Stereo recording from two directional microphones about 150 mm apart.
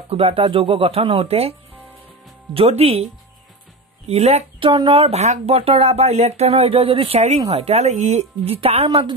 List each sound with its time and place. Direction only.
0.1 s speech: 40° right (ahead or behind)
2.5 s speech: 40° right (ahead or behind)
4.1 s speech: 45° right (ahead or behind)